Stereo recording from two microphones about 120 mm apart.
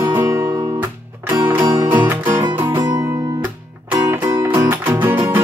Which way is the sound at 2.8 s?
35° right (ahead or behind).